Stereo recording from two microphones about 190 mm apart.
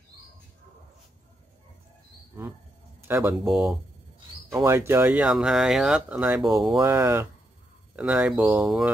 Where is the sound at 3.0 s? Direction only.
15° right (ahead or behind).